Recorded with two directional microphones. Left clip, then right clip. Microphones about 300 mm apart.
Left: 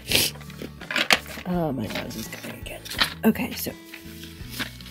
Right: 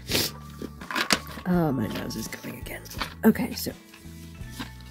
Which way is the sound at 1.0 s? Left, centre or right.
Centre.